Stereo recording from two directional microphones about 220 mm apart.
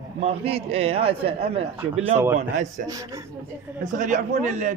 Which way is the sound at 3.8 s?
35° right (ahead or behind).